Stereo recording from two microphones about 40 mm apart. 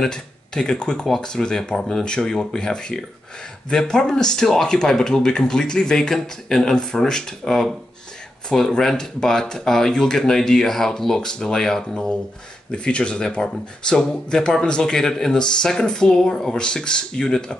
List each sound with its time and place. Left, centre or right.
0.0 s speech: centre
12.7 s speech: left